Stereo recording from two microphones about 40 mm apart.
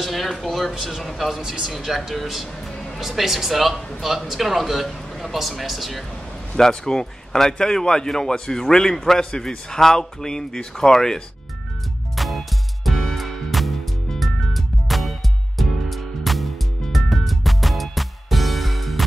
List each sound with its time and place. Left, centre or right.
0.0 s a man's voice: centre
6.5 s a man's voice: centre
12.2 s music: centre